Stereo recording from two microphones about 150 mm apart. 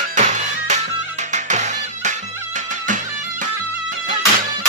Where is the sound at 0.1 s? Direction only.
55° right (ahead or behind).